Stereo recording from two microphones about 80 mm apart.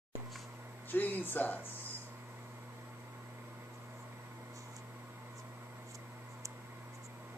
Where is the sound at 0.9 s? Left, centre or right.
Left.